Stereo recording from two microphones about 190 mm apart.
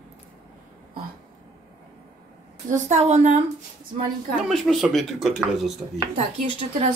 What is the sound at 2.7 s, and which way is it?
Speech, 40° right (ahead or behind).